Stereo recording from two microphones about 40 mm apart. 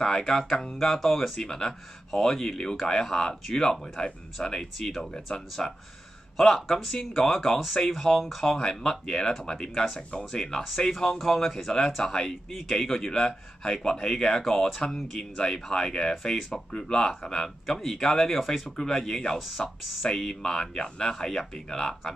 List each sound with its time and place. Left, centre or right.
0.0 s speech: centre
4.7 s speech: centre
8.5 s speech: centre
12.4 s speech: centre
14.4 s speech: centre
15.3 s speech: centre